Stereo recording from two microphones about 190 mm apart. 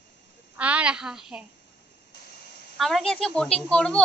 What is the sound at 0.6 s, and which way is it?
Speech, 5° right (ahead or behind).